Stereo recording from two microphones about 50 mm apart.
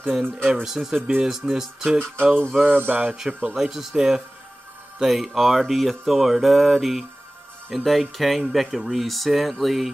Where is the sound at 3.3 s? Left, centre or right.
Centre.